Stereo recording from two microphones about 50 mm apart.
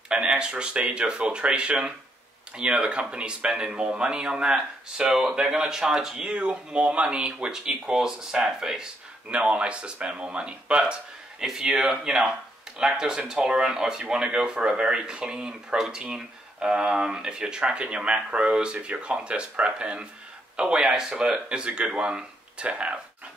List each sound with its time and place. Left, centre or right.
0.1 s speech: centre
9.3 s speech: right